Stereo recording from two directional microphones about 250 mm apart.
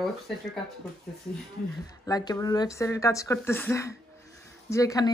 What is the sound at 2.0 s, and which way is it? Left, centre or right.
A woman's voice, centre.